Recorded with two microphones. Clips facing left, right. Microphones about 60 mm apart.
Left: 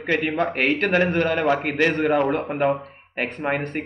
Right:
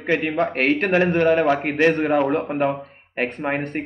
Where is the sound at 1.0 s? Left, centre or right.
Right.